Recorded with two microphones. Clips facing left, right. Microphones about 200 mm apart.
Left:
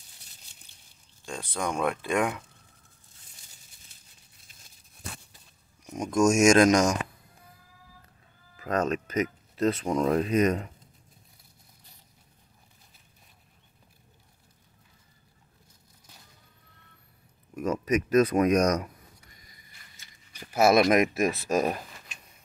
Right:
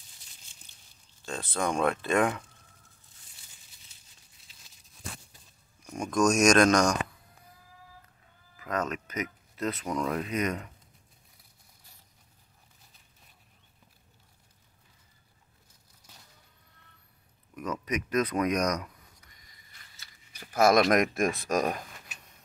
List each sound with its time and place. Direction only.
1.2 s speech: 10° left (ahead or behind)
4.5 s tearing: 50° left (ahead or behind)
5.9 s speech: 20° left (ahead or behind)
8.5 s speech: 30° left (ahead or behind)
17.6 s speech: 25° left (ahead or behind)
20.5 s speech: 5° left (ahead or behind)